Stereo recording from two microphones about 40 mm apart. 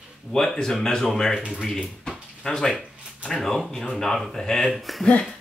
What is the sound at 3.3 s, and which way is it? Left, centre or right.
Speech, centre.